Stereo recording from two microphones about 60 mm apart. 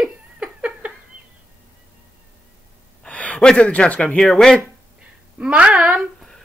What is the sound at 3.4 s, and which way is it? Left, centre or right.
Speech, centre.